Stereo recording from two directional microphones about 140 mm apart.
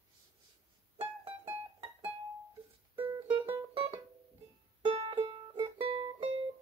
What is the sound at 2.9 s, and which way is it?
Music, 15° right (ahead or behind).